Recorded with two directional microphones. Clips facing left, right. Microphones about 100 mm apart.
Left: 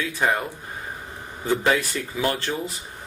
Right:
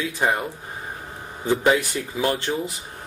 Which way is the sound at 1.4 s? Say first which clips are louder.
Right 2 dB; 15° right (ahead or behind).